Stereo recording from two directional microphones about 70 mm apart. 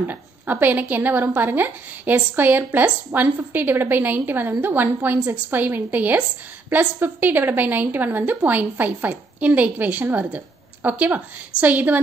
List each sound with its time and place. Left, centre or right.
0.0 s a woman's voice: right